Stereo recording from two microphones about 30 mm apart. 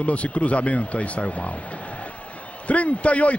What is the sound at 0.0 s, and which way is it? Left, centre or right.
Speech, left.